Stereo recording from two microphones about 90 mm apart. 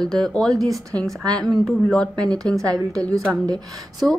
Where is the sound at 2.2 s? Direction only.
45° right (ahead or behind).